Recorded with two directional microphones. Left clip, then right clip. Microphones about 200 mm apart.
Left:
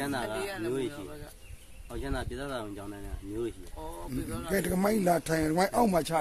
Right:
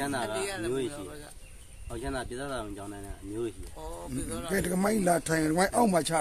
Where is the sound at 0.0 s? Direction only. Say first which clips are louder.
Right 1 dB; 5° right (ahead or behind).